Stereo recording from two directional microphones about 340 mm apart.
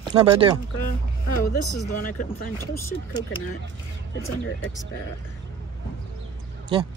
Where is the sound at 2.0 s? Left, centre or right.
Left.